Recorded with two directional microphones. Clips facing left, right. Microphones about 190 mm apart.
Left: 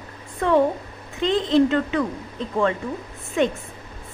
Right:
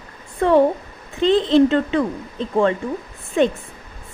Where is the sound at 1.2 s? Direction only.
30° right (ahead or behind).